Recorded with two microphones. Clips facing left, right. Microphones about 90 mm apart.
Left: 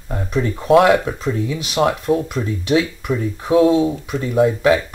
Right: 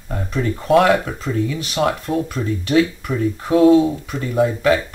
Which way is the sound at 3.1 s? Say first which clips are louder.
Left 1 dB; 5° left (ahead or behind).